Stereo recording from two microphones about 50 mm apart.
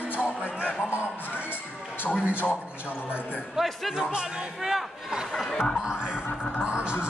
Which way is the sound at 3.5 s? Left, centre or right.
Centre.